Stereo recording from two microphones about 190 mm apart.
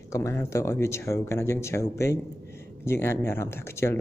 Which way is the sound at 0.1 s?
15° left (ahead or behind).